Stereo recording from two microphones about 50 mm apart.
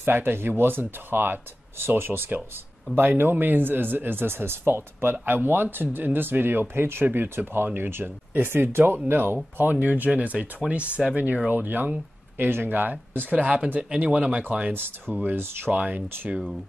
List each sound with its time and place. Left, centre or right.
0.0 s speech: right
5.1 s speech: right
14.7 s speech: right
15.7 s speech: right